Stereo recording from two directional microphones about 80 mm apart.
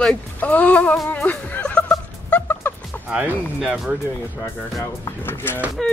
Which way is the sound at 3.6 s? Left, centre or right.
Centre.